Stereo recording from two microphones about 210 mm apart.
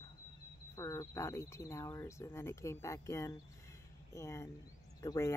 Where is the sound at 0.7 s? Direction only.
15° left (ahead or behind).